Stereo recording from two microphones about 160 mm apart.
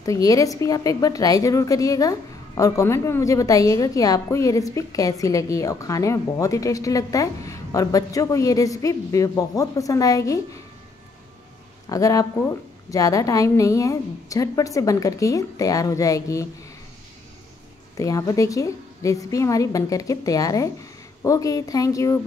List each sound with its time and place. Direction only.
0.0 s a woman's voice: 20° left (ahead or behind)
11.9 s a woman's voice: 20° left (ahead or behind)
17.9 s a woman's voice: 20° left (ahead or behind)